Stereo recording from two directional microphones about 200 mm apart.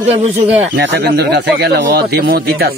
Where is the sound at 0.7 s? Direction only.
55° right (ahead or behind).